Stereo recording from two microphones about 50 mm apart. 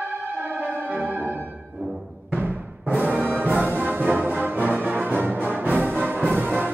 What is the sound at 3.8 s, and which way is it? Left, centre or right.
Music, right.